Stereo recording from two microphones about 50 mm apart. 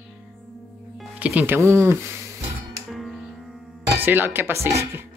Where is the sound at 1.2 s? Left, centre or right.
Right.